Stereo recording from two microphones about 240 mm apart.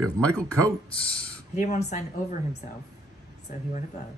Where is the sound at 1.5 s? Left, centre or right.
Left.